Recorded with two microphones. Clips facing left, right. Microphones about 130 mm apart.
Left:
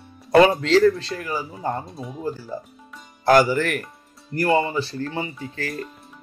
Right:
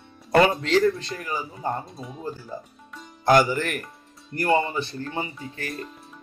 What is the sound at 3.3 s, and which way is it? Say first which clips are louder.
Speech: left 3 dB; 45° left (ahead or behind).